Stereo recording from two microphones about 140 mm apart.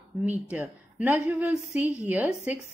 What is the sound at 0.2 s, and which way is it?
A woman's voice, 10° right (ahead or behind).